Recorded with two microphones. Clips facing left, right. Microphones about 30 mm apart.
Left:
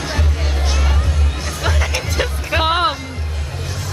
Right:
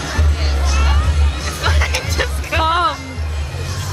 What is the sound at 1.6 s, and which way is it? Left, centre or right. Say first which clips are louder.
Music: right 2 dB; centre.